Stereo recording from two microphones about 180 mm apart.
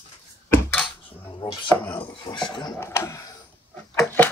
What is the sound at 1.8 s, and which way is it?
Dishes, 10° left (ahead or behind).